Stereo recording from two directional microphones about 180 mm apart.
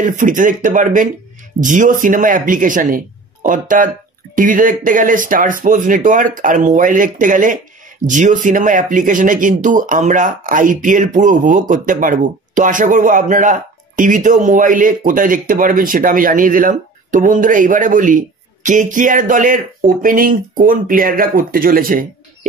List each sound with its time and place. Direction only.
0.0 s speech: 45° right (ahead or behind)